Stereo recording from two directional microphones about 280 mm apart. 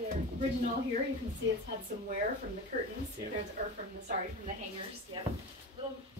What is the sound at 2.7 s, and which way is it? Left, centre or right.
Speech, right.